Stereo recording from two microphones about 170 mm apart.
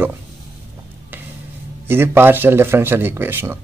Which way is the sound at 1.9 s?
15° right (ahead or behind).